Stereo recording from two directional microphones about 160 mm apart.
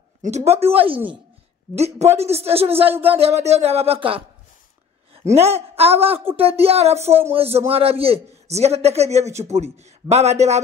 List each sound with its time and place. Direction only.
0.5 s a man's voice: 40° right (ahead or behind)